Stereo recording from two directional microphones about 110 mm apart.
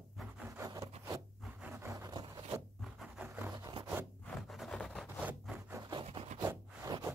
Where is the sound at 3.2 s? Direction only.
15° right (ahead or behind).